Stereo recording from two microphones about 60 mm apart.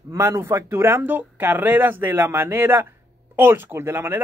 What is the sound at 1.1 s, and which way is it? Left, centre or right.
Speech, right.